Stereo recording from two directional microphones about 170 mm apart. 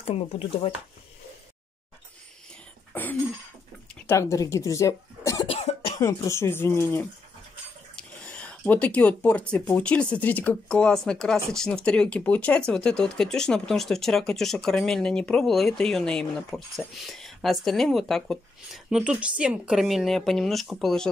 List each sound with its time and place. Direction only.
0.0 s speech: 35° left (ahead or behind)
2.9 s cough: 10° left (ahead or behind)
4.1 s speech: 20° left (ahead or behind)
5.5 s cough: 35° left (ahead or behind)
5.9 s speech: 15° left (ahead or behind); by 21.1 s centre (ahead or behind)